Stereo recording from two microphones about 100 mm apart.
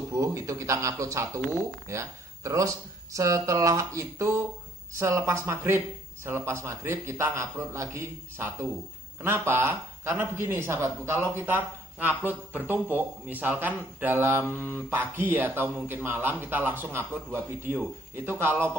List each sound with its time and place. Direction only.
0.1 s a man's voice: 30° right (ahead or behind)